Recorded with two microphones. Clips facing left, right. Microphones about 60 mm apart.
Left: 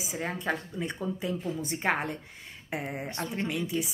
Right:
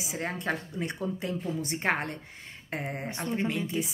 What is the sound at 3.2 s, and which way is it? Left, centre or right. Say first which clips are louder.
Speech: right 2 dB; centre.